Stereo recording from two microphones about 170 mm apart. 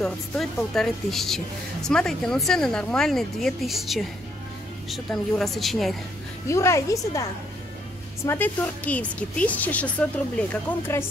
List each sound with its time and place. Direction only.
0.0 s speech: centre (ahead or behind)
6.4 s speech: 15° left (ahead or behind)
8.3 s speech: 10° left (ahead or behind)